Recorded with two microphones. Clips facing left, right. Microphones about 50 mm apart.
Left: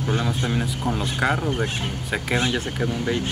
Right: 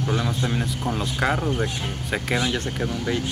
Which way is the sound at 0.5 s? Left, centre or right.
Centre.